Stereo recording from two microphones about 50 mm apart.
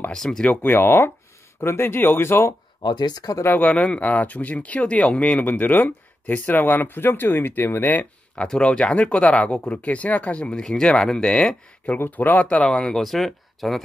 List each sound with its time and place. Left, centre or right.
0.1 s speech: centre
0.7 s speech: left
3.5 s speech: left
4.0 s speech: left
5.4 s speech: left
8.5 s speech: centre
12.0 s speech: left
12.4 s speech: left
13.0 s speech: centre